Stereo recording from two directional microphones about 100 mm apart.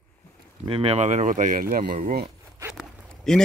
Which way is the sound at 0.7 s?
65° right (ahead or behind).